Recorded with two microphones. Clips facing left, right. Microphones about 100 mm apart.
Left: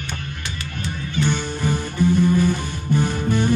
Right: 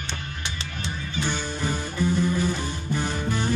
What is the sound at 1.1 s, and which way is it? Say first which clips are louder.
Music: left 6 dB; 60° left (ahead or behind).